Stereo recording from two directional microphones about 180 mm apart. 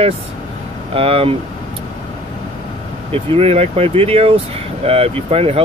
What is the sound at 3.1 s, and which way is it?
Speech, 35° right (ahead or behind).